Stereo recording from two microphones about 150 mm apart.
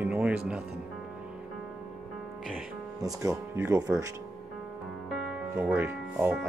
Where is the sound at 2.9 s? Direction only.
20° right (ahead or behind).